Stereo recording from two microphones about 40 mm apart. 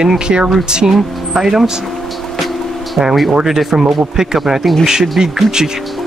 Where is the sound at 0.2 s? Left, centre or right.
Right.